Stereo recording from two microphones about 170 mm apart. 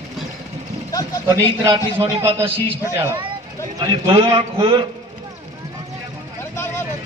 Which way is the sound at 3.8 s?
30° right (ahead or behind).